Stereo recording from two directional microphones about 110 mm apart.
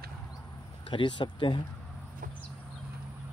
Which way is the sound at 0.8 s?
45° left (ahead or behind).